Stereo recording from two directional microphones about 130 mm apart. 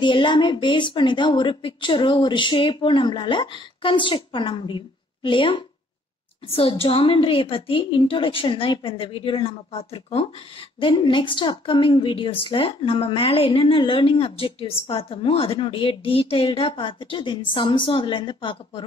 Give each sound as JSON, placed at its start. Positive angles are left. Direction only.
{"t": 0.0, "sound": "a woman's voice", "side_deg": 35}
{"t": 10.8, "sound": "a woman's voice", "side_deg": 40}